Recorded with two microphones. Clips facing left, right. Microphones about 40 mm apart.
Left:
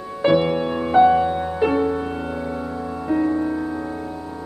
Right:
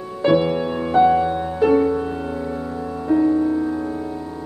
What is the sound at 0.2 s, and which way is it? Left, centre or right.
Music, centre.